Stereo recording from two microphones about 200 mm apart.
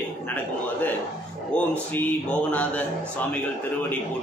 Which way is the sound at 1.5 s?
5° left (ahead or behind).